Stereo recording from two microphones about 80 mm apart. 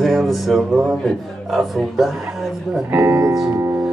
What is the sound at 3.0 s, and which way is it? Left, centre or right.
Speech, right.